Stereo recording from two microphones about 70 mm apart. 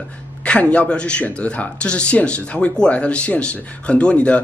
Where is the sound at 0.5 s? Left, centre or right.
Centre.